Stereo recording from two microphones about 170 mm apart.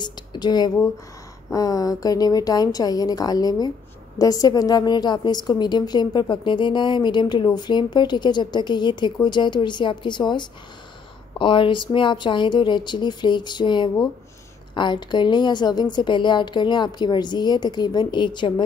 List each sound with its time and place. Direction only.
0.0 s a woman's voice: 25° left (ahead or behind)